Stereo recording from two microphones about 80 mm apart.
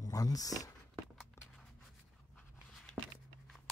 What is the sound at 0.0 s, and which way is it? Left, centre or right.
Speech, left.